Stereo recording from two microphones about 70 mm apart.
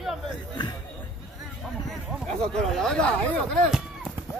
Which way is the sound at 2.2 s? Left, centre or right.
Centre.